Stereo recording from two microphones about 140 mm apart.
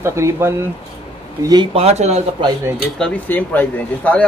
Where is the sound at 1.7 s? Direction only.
50° right (ahead or behind).